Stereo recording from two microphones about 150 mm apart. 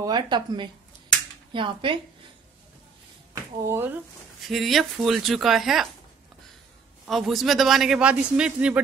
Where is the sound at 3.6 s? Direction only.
15° right (ahead or behind).